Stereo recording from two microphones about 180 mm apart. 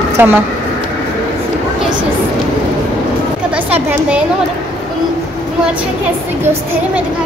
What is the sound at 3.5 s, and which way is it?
Speech, 5° right (ahead or behind).